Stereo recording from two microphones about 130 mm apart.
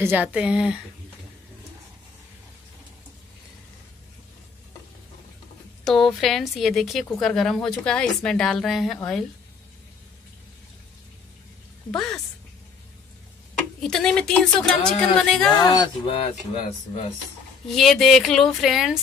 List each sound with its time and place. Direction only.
0.0 s speech: 15° right (ahead or behind)
5.9 s a woman's voice: centre (ahead or behind)
11.9 s a woman's voice: 5° left (ahead or behind)
13.7 s a woman's voice: 5° left (ahead or behind)
15.5 s speech: 30° left (ahead or behind)
16.1 s speech: 50° left (ahead or behind)
17.7 s a woman's voice: centre (ahead or behind)